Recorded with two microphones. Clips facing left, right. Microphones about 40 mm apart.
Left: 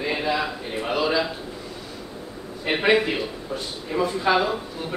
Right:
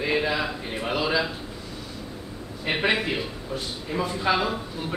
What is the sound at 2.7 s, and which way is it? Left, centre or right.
Speech, centre.